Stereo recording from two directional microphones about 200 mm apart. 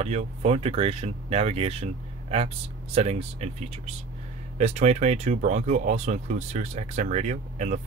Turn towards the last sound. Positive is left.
turn(degrees=-35)  # may be behind; listen again after turning